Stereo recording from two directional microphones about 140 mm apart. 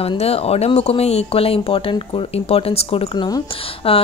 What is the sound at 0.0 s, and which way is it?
Speech, 45° left (ahead or behind).